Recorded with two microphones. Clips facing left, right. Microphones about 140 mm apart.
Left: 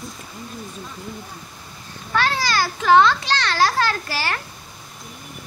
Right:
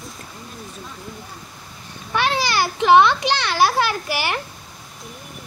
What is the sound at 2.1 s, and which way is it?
A child's voice, 20° right (ahead or behind).